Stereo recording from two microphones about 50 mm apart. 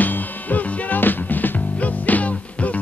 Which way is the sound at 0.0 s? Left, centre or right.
Left.